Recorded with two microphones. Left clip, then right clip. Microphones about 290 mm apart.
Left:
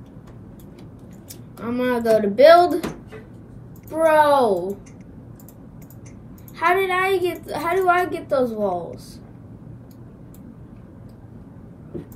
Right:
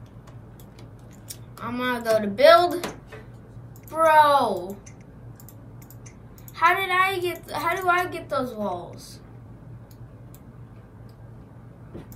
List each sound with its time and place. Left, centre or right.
1.6 s a woman's voice: centre
1.9 s speech: right
3.9 s a woman's voice: centre
6.5 s a woman's voice: centre